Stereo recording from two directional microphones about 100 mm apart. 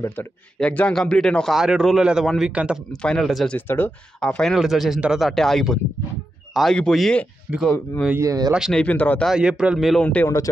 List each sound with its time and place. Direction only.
0.6 s a man's voice: 10° left (ahead or behind); by 2.8 s 10° right (ahead or behind)
3.0 s a man's voice: 5° left (ahead or behind)
3.5 s speech: 20° left (ahead or behind)
4.2 s a man's voice: 5° left (ahead or behind)
8.2 s speech: 35° right (ahead or behind)
8.7 s speech: 15° left (ahead or behind)
9.2 s a man's voice: 5° right (ahead or behind)
10.2 s speech: 30° left (ahead or behind)